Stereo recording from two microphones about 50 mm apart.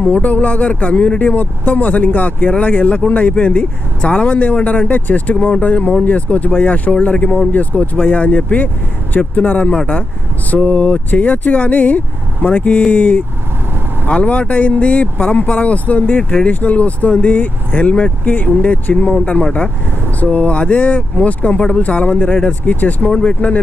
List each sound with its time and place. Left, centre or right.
0.0 s speech: left
16.2 s speech: centre
16.4 s speech: left
22.2 s speech: centre
22.7 s speech: left
23.1 s speech: left